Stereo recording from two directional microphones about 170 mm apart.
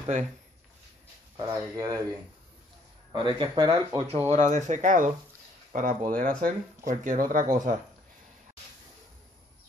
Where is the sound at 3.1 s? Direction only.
30° right (ahead or behind).